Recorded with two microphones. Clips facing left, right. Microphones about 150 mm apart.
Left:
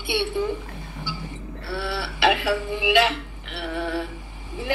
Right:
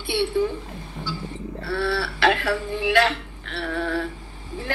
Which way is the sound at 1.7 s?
15° left (ahead or behind).